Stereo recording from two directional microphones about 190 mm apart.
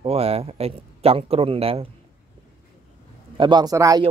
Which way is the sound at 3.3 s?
25° right (ahead or behind).